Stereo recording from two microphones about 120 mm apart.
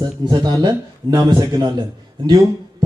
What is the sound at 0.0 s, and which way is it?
A man's voice, 35° right (ahead or behind).